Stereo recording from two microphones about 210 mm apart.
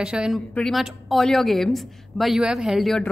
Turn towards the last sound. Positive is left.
turn(degrees=0)  # may be behind; listen again after turning